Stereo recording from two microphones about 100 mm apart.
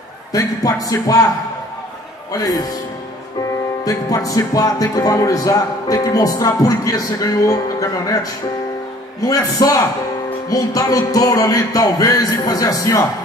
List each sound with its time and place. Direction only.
0.3 s speech: 35° left (ahead or behind)
2.3 s speech: 40° left (ahead or behind)
3.8 s speech: 35° left (ahead or behind)